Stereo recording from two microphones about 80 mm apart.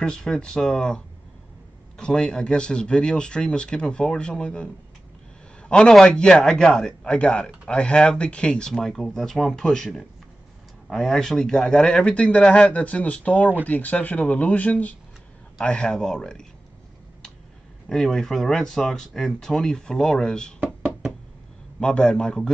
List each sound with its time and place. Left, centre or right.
0.0 s a man's voice: centre
17.8 s speech: centre
20.6 s knock: centre
21.7 s a man's voice: centre